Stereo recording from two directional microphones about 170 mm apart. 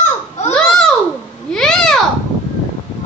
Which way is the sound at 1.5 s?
5° left (ahead or behind).